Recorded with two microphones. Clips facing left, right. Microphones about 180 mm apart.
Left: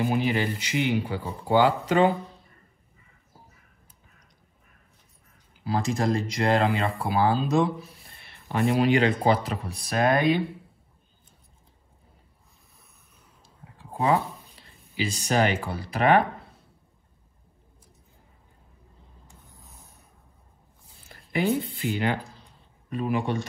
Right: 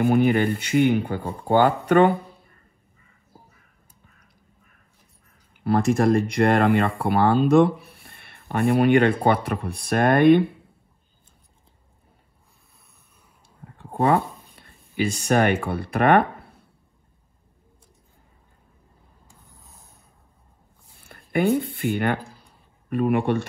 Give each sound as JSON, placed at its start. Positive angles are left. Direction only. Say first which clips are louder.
{"t": 0.0, "sound": "speech", "louder": "right 6 dB", "side_deg": -55}
{"t": 5.6, "sound": "speech", "louder": "right 7 dB", "side_deg": -60}
{"t": 13.7, "sound": "speech", "louder": "right 3 dB", "side_deg": -55}
{"t": 21.0, "sound": "speech", "louder": "right 4 dB", "side_deg": -55}